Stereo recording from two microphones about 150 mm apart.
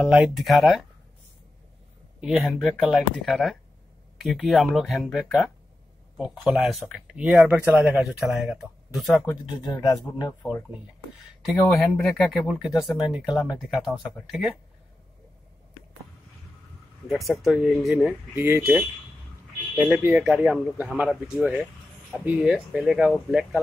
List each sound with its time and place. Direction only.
0.0 s speech: centre (ahead or behind)
2.1 s speech: centre (ahead or behind)
9.5 s speech: 30° left (ahead or behind)
11.4 s speech: centre (ahead or behind)
17.3 s speech: 5° right (ahead or behind)
18.3 s speech: 15° right (ahead or behind)